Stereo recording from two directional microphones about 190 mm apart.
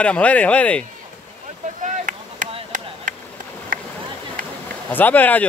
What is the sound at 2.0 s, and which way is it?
Chop, 40° right (ahead or behind).